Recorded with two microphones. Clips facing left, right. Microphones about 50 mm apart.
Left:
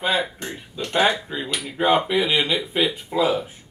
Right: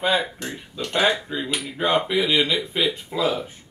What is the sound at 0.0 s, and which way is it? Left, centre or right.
Speech, centre.